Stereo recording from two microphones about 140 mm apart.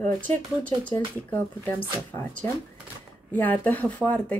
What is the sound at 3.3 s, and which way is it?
Speech, 10° left (ahead or behind).